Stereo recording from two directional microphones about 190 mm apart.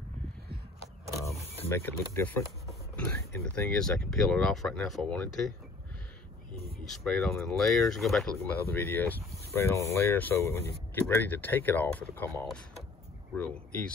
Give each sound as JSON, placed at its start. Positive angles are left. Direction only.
{"t": 1.6, "sound": "speech", "side_deg": 10}
{"t": 6.8, "sound": "speech", "side_deg": 0}
{"t": 8.4, "sound": "speech", "side_deg": 10}